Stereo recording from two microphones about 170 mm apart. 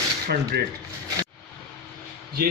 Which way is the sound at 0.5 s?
75° right (ahead or behind).